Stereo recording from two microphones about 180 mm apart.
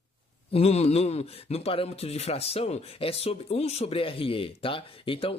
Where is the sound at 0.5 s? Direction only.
35° left (ahead or behind).